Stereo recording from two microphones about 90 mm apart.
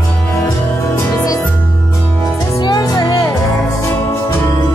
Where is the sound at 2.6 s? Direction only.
55° left (ahead or behind).